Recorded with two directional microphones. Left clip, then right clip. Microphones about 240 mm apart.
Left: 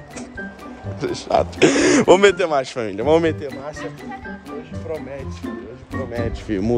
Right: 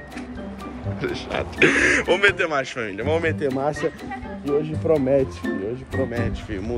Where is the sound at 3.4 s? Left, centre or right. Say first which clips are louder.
Right 6 dB; centre.